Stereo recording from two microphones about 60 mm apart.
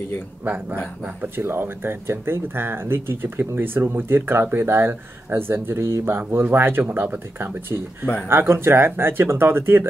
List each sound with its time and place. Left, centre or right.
1.3 s speech: right